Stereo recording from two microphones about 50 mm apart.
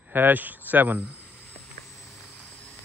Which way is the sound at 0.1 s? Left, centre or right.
Right.